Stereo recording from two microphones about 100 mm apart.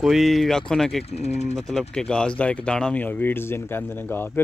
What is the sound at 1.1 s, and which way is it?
Speech, 90° left.